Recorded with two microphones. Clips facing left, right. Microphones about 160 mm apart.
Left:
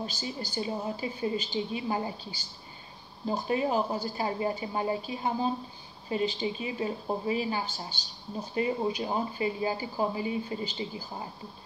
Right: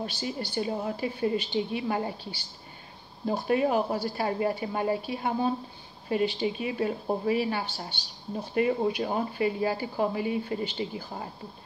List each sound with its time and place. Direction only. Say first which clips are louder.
0.0 s speech: right 3 dB; 60° right (ahead or behind)